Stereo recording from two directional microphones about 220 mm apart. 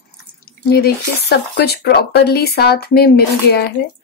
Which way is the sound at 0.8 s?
50° left (ahead or behind).